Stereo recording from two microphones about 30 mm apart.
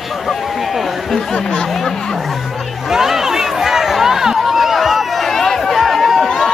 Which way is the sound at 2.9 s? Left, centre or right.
Centre.